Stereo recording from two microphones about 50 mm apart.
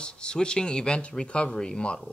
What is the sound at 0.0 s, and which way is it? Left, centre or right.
Speech, centre.